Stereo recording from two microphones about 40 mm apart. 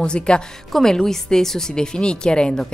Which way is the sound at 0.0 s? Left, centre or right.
Left.